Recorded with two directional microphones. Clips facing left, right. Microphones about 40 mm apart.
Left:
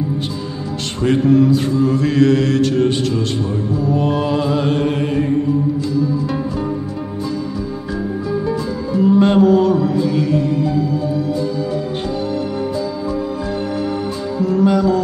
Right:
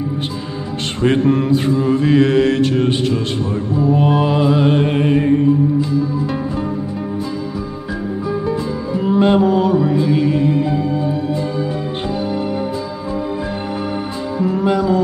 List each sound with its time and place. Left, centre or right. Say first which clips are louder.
1.0 s music: left 2 dB; right
1.7 s mantra: right 2 dB; right
8.9 s music: left 2 dB; centre
14.4 s music: left 2 dB; right